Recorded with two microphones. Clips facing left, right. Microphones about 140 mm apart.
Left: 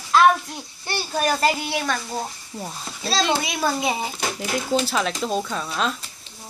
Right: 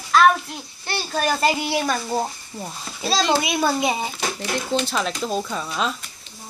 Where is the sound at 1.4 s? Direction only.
5° right (ahead or behind).